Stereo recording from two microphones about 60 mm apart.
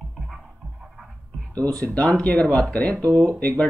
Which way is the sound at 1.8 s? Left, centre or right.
Centre.